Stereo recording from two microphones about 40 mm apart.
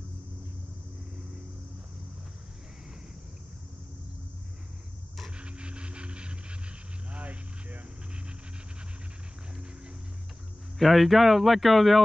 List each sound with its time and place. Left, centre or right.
5.4 s vehicle: right
7.1 s a sound: right
10.8 s speech: centre